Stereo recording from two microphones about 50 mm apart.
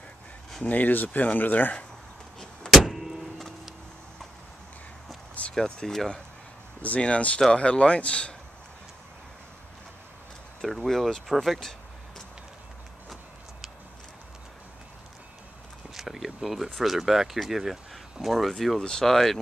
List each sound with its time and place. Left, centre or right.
0.7 s speech: left
2.7 s vehicle: centre
5.5 s speech: centre
6.8 s speech: left
10.9 s speech: centre
15.9 s speech: centre